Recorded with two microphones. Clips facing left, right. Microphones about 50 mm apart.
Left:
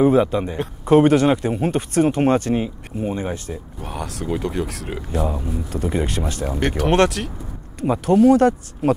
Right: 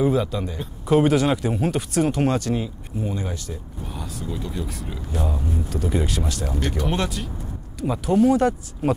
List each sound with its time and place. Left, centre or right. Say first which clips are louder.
0.0 s speech: left 6 dB; left
3.8 s speech: left 5 dB; left
4.3 s speech: left 8 dB; left
4.8 s speech: left 5 dB; left
5.3 s speech: left 1 dB; left
6.8 s speech: left 11 dB; left
8.0 s speech: left 4 dB; left